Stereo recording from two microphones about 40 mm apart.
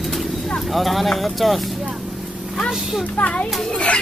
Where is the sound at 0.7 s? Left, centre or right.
Centre.